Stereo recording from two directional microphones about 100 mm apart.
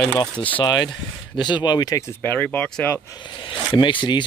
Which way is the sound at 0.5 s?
45° left (ahead or behind).